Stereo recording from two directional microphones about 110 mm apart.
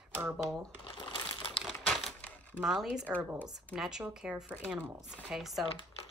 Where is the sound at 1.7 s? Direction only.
5° left (ahead or behind).